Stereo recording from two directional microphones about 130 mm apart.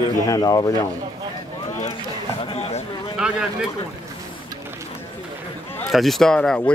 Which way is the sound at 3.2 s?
5° right (ahead or behind).